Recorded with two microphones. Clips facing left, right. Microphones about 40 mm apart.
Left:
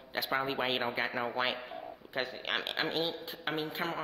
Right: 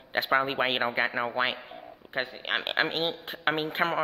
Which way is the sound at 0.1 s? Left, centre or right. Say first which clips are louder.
Right 7 dB; right.